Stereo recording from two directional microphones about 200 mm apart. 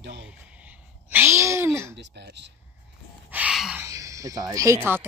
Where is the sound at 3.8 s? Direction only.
15° right (ahead or behind).